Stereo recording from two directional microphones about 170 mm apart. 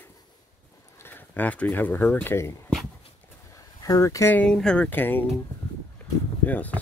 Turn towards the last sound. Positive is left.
turn(degrees=10)  # may be behind; listen again after turning